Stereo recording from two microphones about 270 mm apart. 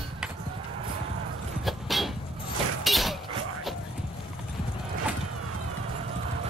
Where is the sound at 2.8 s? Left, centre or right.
Centre.